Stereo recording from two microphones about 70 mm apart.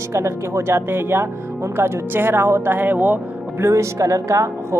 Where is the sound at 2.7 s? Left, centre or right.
Right.